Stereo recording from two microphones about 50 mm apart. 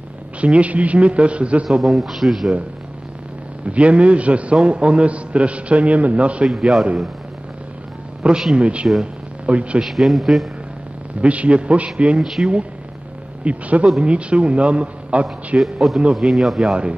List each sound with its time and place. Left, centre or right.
0.4 s a man's voice: right
1.8 s a man's voice: centre
3.7 s a man's voice: right
6.4 s speech: centre
8.2 s a man's voice: right
9.0 s a sound: right
9.8 s a man's voice: centre
11.1 s a man's voice: right
12.2 s a man's voice: centre
13.4 s a man's voice: right
15.6 s a man's voice: centre